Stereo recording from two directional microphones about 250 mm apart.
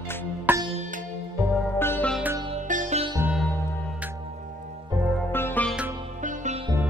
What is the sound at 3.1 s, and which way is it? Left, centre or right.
Music, centre.